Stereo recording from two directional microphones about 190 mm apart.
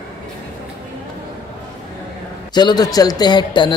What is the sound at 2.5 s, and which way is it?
Speech, 20° left (ahead or behind).